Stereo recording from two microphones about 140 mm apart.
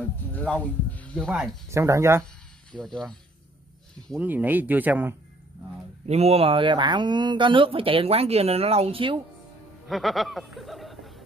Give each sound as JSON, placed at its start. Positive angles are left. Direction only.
{"t": 0.3, "sound": "speech", "side_deg": 10}
{"t": 1.7, "sound": "speech", "side_deg": -20}
{"t": 2.7, "sound": "speech", "side_deg": 5}
{"t": 4.2, "sound": "speech", "side_deg": -10}
{"t": 6.0, "sound": "speech", "side_deg": -50}
{"t": 9.8, "sound": "a sound", "side_deg": 0}